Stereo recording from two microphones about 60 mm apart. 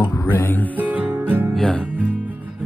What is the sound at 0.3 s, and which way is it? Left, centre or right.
Music, left.